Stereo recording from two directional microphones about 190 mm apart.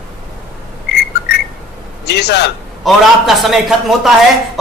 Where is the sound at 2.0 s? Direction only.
60° left (ahead or behind).